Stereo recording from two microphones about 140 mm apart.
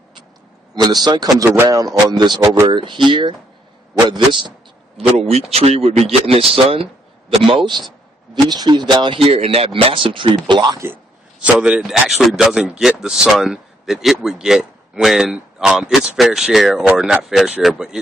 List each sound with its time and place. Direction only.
0.7 s a man's voice: 30° right (ahead or behind)
4.9 s speech: 45° right (ahead or behind)
11.4 s speech: 5° right (ahead or behind)